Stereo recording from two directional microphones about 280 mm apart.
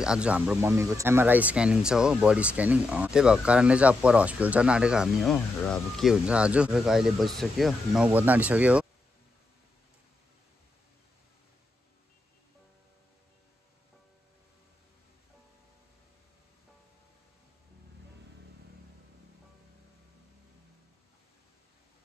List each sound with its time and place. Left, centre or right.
0.0 s speech: centre